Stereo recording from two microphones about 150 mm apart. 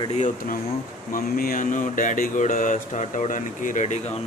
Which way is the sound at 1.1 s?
75° left (ahead or behind).